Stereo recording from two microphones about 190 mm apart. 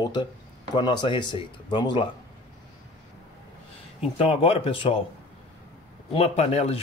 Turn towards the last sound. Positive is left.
turn(degrees=30)  # may be behind; listen again after turning